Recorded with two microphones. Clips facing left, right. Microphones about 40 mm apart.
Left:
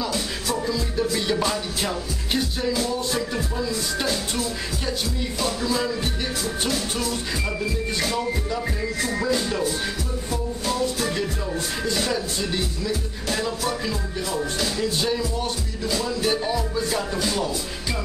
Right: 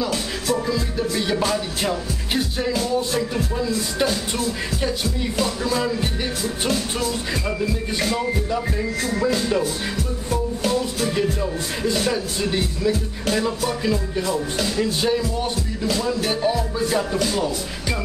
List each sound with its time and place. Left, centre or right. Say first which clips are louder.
0.9 s speech: left 2 dB; centre
5.4 s music: right 2 dB; right
8.1 s speech: right 3 dB; centre
10.3 s music: right 5 dB; right
12.1 s speech: right 3 dB; centre
14.2 s music: right 2 dB; right
15.0 s speech: right 3 dB; centre